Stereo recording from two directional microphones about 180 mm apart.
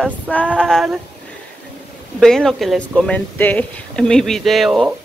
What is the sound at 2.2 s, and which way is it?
A woman's voice, 5° left (ahead or behind).